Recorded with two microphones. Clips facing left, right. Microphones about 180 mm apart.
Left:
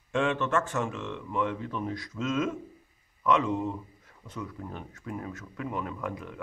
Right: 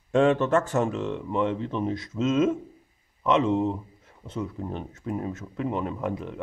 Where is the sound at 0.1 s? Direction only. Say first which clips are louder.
Right 7 dB; 40° right (ahead or behind).